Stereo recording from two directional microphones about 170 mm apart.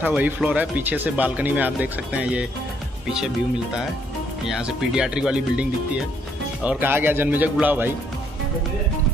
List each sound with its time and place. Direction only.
0.0 s speech: 10° right (ahead or behind)
4.5 s speech: 5° right (ahead or behind)